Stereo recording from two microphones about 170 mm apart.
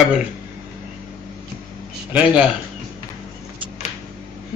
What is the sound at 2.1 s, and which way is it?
Speech, 5° right (ahead or behind).